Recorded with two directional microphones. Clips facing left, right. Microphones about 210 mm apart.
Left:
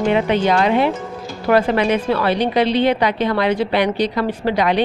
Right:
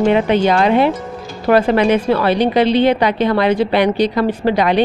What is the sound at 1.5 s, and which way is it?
A woman's voice, 35° right (ahead or behind).